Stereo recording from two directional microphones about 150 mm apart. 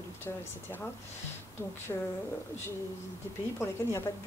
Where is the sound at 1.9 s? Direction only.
20° left (ahead or behind).